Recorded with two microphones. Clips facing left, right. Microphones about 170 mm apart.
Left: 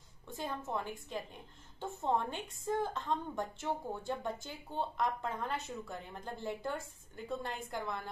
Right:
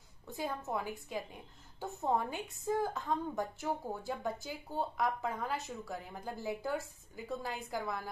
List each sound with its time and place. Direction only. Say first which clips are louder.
0.4 s a woman's voice: right 1 dB; 10° right (ahead or behind)